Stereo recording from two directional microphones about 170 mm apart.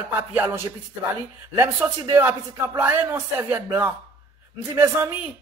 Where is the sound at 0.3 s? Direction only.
10° right (ahead or behind).